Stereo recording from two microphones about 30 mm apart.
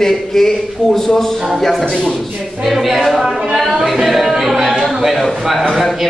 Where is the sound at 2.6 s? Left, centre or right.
Centre.